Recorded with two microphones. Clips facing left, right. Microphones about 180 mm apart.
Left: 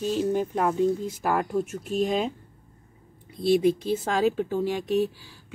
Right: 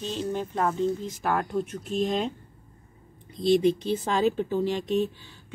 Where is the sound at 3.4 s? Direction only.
5° left (ahead or behind).